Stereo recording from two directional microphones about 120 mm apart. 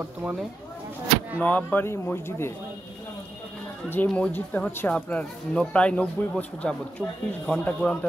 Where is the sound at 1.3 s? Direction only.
10° left (ahead or behind).